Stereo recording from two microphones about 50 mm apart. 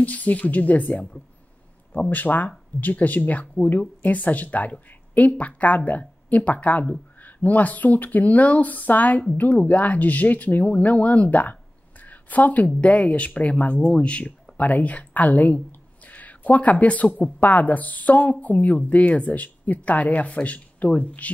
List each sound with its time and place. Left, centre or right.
0.0 s speech: left
12.0 s a sound: left
12.6 s speech: left